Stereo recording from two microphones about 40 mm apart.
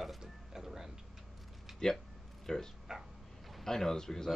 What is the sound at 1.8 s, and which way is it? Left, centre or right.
Speech, centre.